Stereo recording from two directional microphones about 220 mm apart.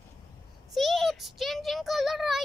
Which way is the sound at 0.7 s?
Centre (ahead or behind).